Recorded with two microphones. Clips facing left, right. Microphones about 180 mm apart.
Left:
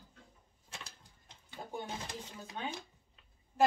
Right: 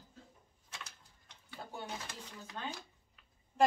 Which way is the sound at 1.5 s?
20° left (ahead or behind).